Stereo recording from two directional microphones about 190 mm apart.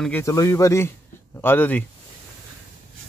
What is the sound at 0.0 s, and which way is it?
Speech, 15° left (ahead or behind).